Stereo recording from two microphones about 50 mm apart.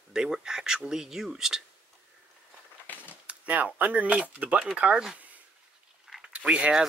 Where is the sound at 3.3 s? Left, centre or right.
Right.